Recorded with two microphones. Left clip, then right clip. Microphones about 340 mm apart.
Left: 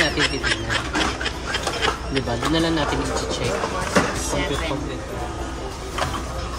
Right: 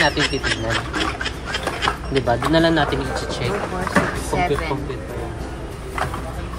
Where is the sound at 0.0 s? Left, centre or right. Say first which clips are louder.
Right 2 dB; centre.